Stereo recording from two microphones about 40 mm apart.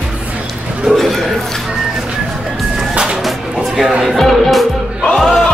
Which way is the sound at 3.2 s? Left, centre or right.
Centre.